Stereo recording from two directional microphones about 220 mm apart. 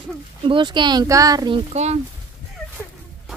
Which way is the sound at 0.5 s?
20° right (ahead or behind).